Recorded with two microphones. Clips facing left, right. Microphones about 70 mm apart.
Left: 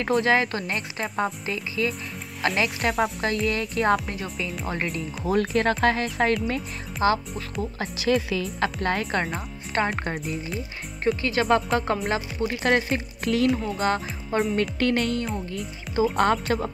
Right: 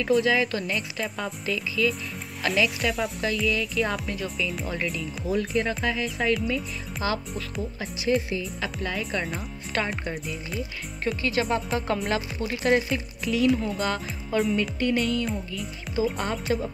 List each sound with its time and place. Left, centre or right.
0.0 s speech: left
7.8 s a woman's voice: left
8.8 s a woman's voice: left
12.1 s speech: left
12.7 s speech: left
13.5 s speech: centre
13.7 s speech: left
14.5 s speech: left